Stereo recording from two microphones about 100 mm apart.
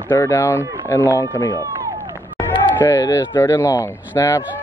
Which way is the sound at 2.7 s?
30° left (ahead or behind).